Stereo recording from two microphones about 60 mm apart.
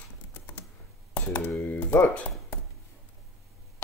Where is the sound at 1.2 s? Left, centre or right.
Left.